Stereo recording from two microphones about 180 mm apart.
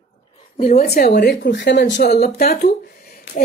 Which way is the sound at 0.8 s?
60° left (ahead or behind).